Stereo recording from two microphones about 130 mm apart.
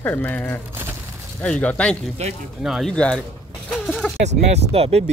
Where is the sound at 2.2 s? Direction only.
55° right (ahead or behind).